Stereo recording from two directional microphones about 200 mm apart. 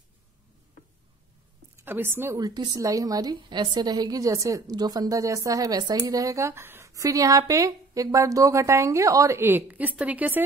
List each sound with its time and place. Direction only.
1.9 s a woman's voice: 10° right (ahead or behind)